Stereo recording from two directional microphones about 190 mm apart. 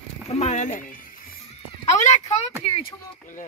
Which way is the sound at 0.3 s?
35° left (ahead or behind).